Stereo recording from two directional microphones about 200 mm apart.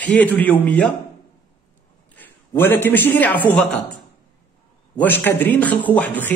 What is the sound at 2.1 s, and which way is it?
A man's voice, 10° left (ahead or behind).